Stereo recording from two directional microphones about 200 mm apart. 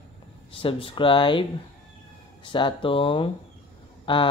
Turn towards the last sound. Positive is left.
turn(degrees=25)  # may be behind; listen again after turning